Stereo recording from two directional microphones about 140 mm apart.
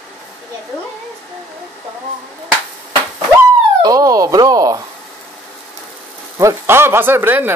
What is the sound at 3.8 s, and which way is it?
Speech, 25° right (ahead or behind).